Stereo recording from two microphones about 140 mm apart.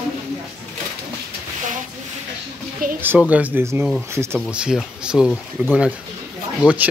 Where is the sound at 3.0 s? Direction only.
10° right (ahead or behind).